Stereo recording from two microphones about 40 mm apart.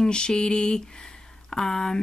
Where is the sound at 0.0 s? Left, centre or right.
Centre.